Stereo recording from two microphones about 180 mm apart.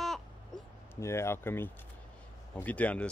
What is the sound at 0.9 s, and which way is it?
Speech, 15° left (ahead or behind).